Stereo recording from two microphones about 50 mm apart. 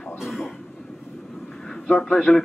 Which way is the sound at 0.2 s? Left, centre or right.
Centre.